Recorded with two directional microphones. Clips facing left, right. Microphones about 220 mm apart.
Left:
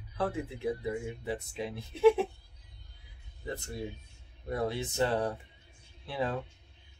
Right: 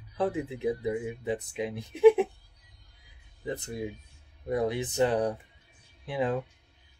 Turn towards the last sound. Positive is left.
turn(degrees=-15)  # may be behind; listen again after turning